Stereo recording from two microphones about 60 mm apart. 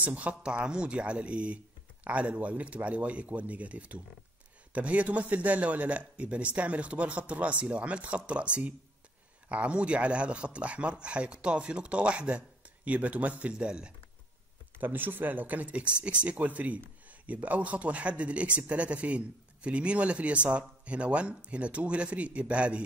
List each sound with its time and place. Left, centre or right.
0.0 s speech: right
14.8 s speech: right